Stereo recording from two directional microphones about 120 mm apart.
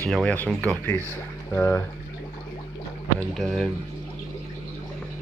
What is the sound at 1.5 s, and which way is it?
Speech, 20° left (ahead or behind).